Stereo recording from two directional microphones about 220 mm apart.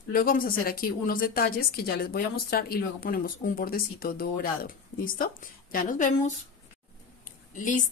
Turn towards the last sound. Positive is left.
turn(degrees=35)  # may be behind; listen again after turning